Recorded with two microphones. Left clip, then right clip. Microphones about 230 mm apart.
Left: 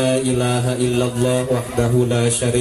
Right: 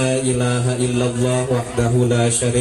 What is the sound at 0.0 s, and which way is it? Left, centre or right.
A man's voice, left.